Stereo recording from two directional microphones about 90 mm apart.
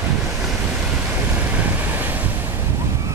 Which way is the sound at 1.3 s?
20° right (ahead or behind).